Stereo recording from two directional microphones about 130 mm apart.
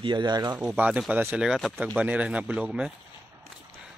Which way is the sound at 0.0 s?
35° right (ahead or behind).